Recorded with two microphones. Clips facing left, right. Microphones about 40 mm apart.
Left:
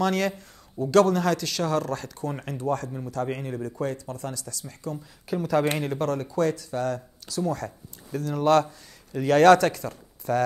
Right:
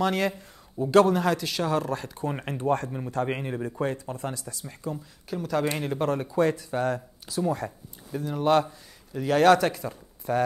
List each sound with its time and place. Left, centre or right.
0.0 s speech: centre
4.9 s speech: centre
5.9 s speech: centre